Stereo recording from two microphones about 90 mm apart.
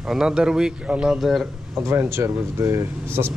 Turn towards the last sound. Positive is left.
turn(degrees=-30)  # may be behind; listen again after turning